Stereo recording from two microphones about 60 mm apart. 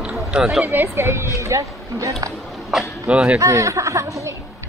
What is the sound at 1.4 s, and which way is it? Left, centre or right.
Speech, right.